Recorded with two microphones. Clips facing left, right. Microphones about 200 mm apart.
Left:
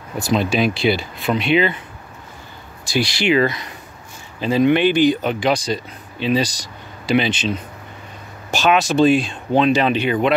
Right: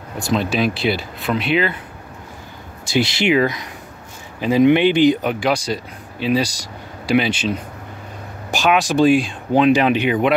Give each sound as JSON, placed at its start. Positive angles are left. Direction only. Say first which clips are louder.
{"t": 0.2, "sound": "speech", "louder": "left 1 dB", "side_deg": 0}
{"t": 2.8, "sound": "speech", "louder": "right 2 dB", "side_deg": -20}
{"t": 4.4, "sound": "speech", "louder": "right 2 dB", "side_deg": -15}